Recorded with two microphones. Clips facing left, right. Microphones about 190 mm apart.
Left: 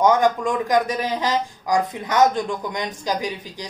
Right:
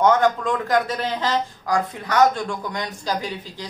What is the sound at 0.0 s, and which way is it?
Speech, 15° left (ahead or behind).